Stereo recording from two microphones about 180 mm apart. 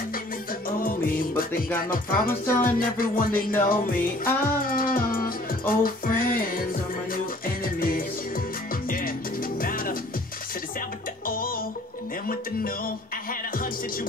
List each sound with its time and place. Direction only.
0.7 s music: 50° left (ahead or behind)
11.2 s music: 50° left (ahead or behind)